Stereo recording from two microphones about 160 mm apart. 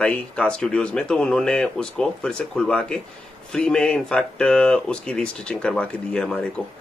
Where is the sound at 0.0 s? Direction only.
5° left (ahead or behind).